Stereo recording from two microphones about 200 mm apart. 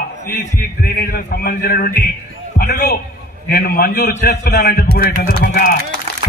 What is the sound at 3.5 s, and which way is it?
A man's voice, 50° left (ahead or behind).